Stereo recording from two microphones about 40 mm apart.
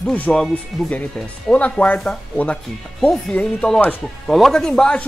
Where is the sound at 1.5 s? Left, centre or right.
Left.